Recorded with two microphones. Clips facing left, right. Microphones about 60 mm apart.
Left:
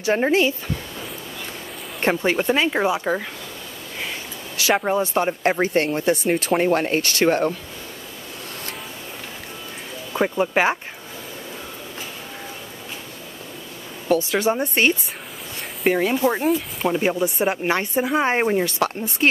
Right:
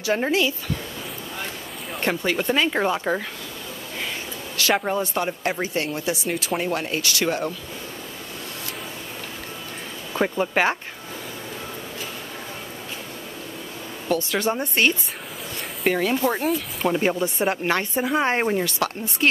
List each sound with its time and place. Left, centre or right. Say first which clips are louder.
0.3 s speech: left 3 dB; left
2.0 s speech: left 3 dB; left
2.7 s speech: left 2 dB; centre
4.6 s speech: left 2 dB; centre
5.4 s speech: left 6 dB; left
10.1 s speech: left 2 dB; centre
14.1 s speech: left 4 dB; left
16.0 s speech: left 2 dB; centre
17.6 s speech: left 2 dB; centre
18.6 s speech: left 3 dB; left